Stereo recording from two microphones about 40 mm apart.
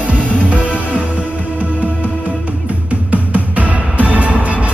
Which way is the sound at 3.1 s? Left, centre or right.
Right.